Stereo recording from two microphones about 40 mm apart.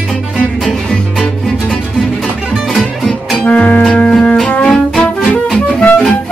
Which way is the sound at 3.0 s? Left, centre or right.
Centre.